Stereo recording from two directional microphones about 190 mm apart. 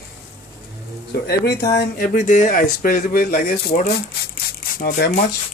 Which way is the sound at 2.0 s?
40° left (ahead or behind).